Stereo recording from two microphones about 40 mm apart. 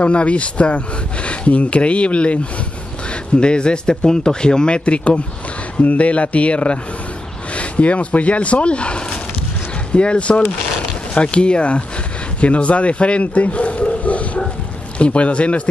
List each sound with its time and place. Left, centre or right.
0.0 s speech: left
12.4 s a sound: left
15.0 s speech: left